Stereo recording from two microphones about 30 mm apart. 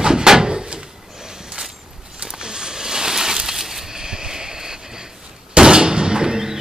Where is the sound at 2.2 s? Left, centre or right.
Right.